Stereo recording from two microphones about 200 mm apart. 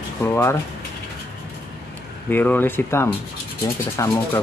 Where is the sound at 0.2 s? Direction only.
10° left (ahead or behind).